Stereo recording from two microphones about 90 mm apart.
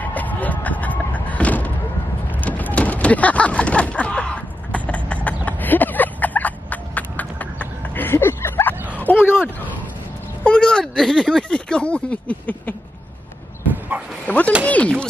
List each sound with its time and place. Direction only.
0.0 s a sound: 20° left (ahead or behind)
10.4 s speech: 10° left (ahead or behind)
14.2 s speech: 15° left (ahead or behind)